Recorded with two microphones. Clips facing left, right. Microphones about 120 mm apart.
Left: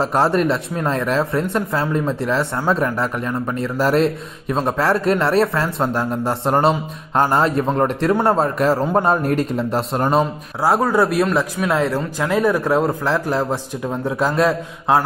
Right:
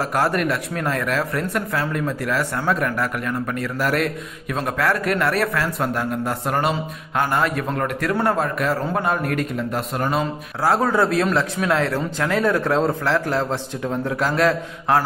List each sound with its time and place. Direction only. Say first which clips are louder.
0.0 s a man's voice: left 4 dB; 25° left (ahead or behind)
10.8 s a man's voice: left 2 dB; 10° left (ahead or behind)